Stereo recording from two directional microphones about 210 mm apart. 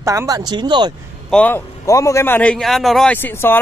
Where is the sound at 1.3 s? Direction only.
10° left (ahead or behind).